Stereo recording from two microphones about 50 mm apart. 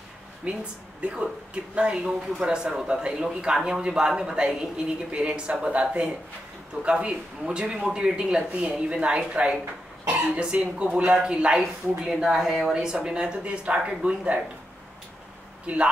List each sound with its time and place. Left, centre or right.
0.4 s a man's voice: right
12.0 s a man's voice: centre
12.7 s speech: centre
15.6 s speech: right